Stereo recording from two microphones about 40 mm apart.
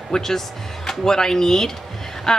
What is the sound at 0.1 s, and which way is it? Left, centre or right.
A woman's voice, centre.